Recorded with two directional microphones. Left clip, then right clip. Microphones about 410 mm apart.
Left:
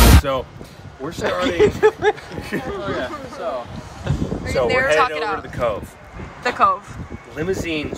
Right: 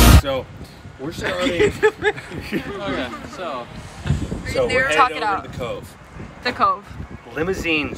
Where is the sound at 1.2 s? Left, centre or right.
Centre.